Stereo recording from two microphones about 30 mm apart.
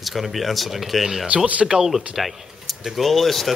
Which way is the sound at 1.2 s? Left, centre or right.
Right.